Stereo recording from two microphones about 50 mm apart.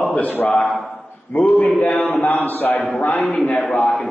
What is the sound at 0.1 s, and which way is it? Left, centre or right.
Speech, left.